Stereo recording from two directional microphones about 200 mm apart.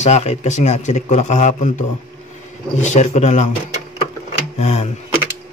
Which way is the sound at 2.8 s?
35° left (ahead or behind).